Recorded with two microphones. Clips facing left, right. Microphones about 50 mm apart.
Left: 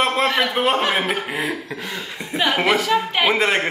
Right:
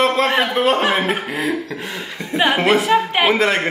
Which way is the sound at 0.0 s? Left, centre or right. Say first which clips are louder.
Right 3 dB; centre.